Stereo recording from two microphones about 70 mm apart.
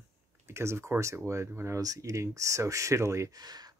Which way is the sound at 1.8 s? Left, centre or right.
Right.